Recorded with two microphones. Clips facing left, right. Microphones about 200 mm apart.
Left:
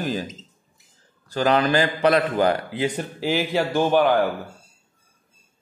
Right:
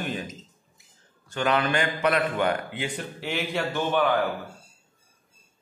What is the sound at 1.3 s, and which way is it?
A man's voice, 35° left (ahead or behind).